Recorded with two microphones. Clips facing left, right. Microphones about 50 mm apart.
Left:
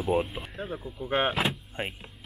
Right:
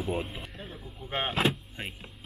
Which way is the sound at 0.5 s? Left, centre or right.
Left.